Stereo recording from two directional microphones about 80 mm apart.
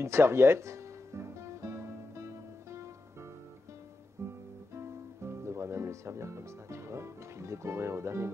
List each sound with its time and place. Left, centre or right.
0.0 s music: right
4.2 s guitar: right
4.7 s music: right